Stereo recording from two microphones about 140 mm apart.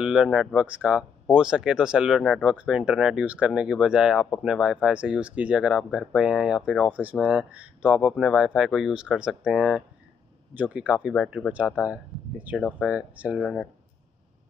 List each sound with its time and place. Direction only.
0.0 s speech: 5° right (ahead or behind)
13.4 s speech: centre (ahead or behind)